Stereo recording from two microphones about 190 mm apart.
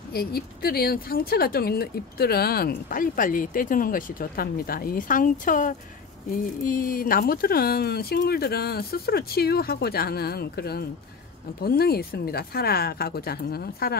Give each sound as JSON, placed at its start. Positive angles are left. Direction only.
{"t": 0.1, "sound": "speech", "side_deg": 55}